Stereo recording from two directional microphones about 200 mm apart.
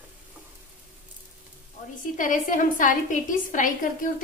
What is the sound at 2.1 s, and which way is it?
A woman's voice, 40° left (ahead or behind).